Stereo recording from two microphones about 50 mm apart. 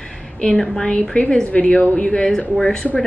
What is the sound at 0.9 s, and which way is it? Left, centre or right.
A woman's voice, left.